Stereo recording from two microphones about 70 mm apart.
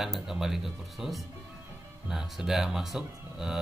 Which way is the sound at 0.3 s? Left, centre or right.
Centre.